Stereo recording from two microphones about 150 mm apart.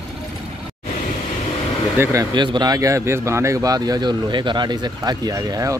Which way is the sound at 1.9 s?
20° right (ahead or behind).